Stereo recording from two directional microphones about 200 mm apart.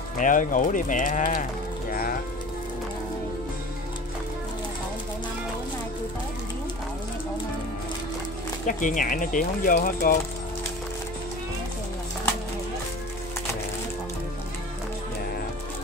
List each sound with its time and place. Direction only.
0.2 s speech: 40° left (ahead or behind)
8.6 s speech: 40° left (ahead or behind)